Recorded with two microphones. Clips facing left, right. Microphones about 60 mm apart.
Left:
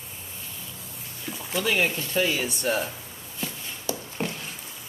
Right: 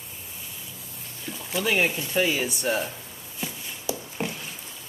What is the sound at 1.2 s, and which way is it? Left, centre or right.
Speech, centre.